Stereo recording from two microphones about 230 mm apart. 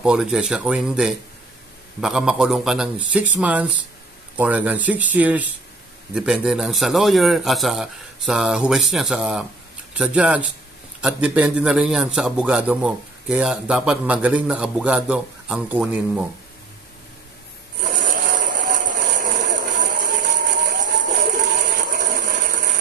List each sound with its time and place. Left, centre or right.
0.0 s a man's voice: centre
17.7 s rub: right
18.5 s a sound: right